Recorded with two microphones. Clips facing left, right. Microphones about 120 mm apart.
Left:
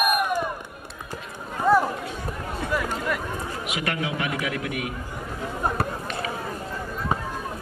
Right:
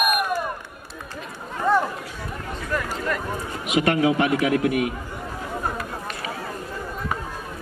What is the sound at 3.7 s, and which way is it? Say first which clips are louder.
A man's voice: right 10 dB; 30° right (ahead or behind).